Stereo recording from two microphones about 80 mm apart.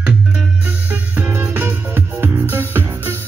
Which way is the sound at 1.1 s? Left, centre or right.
Centre.